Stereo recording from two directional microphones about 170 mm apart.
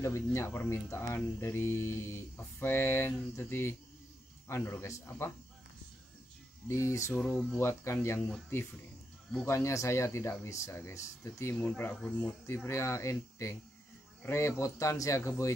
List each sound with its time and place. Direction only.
0.0 s speech: 15° left (ahead or behind)
6.7 s speech: 15° left (ahead or behind)
9.5 s speech: 15° left (ahead or behind)